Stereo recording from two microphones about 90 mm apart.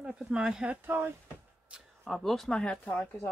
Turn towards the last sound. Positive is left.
turn(degrees=15)  # may be behind; listen again after turning